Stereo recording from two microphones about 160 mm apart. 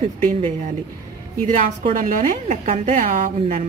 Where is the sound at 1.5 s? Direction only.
45° right (ahead or behind).